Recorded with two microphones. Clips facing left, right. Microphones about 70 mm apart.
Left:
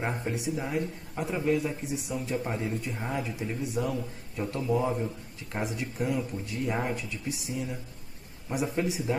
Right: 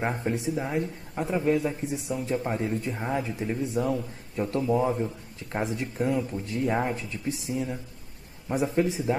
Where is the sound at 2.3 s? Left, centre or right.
Centre.